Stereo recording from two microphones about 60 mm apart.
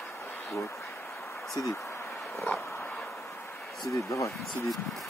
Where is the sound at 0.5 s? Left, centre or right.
Left.